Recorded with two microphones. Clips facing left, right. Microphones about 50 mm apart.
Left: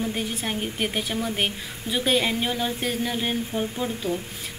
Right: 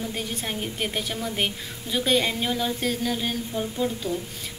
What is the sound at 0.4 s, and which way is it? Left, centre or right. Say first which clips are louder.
A woman's voice: left 2 dB; centre.